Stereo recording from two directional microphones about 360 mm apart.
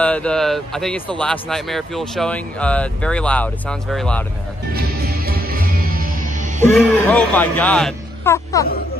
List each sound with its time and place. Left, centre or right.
0.0 s speech: centre
4.7 s music: right
6.6 s speech: centre